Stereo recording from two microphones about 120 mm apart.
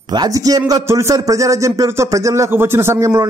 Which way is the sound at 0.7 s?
25° right (ahead or behind).